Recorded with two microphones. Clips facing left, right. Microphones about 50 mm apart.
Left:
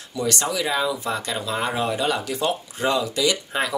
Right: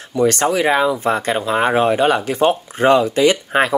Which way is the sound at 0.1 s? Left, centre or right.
Right.